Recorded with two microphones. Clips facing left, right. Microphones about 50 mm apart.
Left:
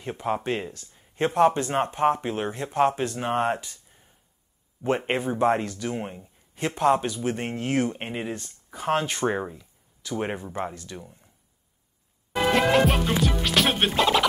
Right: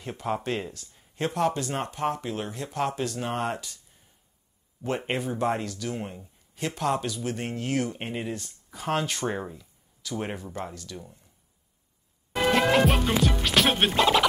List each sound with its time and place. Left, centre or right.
0.0 s speech: centre
1.2 s speech: left
12.4 s music: centre